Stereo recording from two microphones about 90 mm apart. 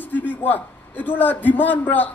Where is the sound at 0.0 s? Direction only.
20° left (ahead or behind).